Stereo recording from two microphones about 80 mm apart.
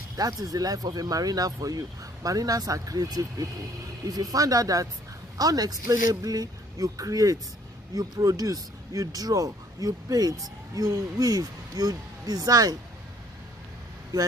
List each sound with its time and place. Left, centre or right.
0.2 s speech: right
14.1 s speech: right